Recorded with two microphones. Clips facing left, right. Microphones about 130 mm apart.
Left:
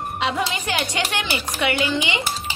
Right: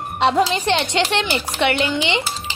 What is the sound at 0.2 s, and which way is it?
A woman's voice, 30° right (ahead or behind).